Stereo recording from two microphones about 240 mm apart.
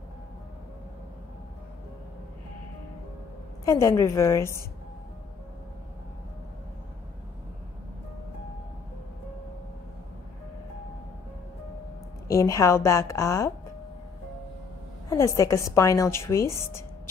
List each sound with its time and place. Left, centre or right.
3.6 s a woman's voice: centre
12.3 s a woman's voice: centre
15.0 s a woman's voice: centre